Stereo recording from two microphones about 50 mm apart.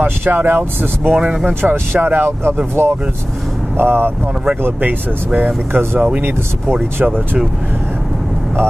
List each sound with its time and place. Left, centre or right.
0.0 s speech: right
1.1 s speech: centre
1.6 s speech: right
2.2 s speech: right
4.8 s speech: right
5.7 s speech: right